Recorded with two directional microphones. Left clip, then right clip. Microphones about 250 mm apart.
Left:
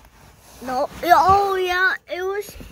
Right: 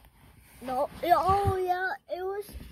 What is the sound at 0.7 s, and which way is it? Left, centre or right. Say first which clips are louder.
A woman's voice: left 8 dB; centre.